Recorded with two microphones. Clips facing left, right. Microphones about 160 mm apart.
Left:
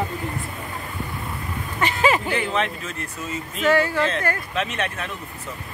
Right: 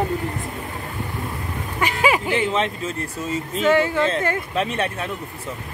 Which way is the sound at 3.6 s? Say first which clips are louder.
Right 1 dB; 20° right (ahead or behind).